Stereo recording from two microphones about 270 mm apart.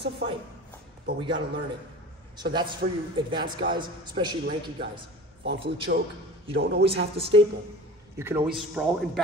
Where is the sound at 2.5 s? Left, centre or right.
Centre.